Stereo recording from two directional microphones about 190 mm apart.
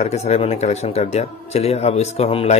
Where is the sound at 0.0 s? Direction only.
35° left (ahead or behind).